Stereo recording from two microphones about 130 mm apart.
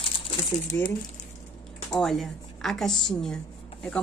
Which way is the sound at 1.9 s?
Centre (ahead or behind).